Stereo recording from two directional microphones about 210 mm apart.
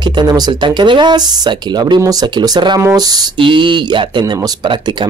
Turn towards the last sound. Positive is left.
turn(degrees=-20)  # may be behind; listen again after turning